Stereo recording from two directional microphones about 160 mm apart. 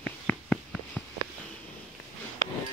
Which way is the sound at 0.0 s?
5° left (ahead or behind).